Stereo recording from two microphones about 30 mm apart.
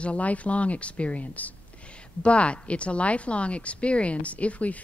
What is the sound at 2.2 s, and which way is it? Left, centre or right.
Speech, left.